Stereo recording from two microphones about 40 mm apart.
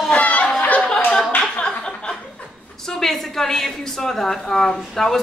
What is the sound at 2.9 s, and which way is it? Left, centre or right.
A woman's voice, centre.